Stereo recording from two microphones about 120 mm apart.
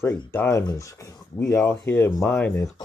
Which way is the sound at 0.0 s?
20° left (ahead or behind).